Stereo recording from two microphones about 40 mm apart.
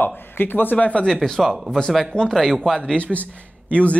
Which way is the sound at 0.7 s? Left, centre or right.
Left.